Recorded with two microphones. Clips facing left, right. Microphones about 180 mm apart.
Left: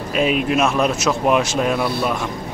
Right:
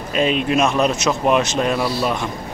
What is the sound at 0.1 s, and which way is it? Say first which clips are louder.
Speech: even; 5° left (ahead or behind).